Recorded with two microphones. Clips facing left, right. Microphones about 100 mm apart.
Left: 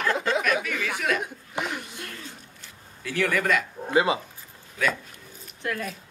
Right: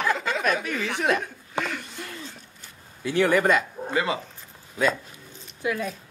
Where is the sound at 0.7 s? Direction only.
25° right (ahead or behind).